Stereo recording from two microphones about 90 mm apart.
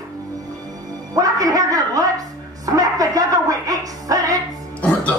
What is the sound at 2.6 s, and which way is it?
Music, 40° right (ahead or behind).